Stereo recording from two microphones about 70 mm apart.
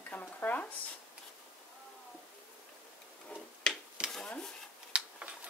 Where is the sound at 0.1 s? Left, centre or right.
Left.